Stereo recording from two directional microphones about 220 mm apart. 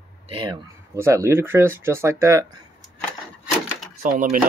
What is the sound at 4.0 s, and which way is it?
Speech, 40° right (ahead or behind).